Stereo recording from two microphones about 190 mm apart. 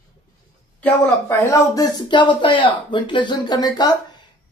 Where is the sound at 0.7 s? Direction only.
10° left (ahead or behind).